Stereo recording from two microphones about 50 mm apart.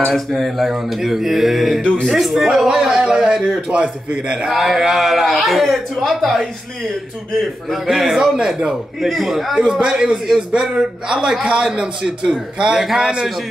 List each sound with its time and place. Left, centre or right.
0.1 s a man's voice: centre
4.6 s speech: centre
7.7 s a man's voice: centre
9.1 s speech: centre
9.6 s a man's voice: centre